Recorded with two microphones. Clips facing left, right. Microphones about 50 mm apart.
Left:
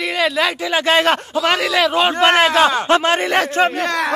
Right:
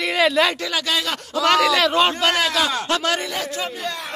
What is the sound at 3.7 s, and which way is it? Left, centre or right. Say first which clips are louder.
Speech: left 9 dB; left.